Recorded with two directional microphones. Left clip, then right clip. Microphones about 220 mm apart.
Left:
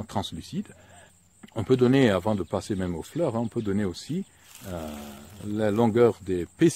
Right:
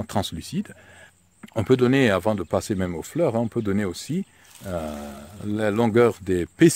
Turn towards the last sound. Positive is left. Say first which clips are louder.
# right 5 dB
turn(degrees=-45)  # may be behind; listen again after turning